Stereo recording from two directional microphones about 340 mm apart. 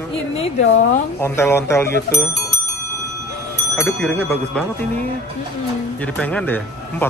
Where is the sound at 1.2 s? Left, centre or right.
Centre.